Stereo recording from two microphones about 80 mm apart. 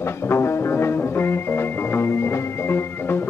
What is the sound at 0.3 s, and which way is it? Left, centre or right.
Music, left.